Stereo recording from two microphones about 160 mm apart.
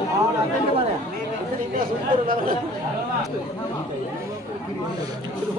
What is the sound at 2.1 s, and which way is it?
Speech, 60° right (ahead or behind).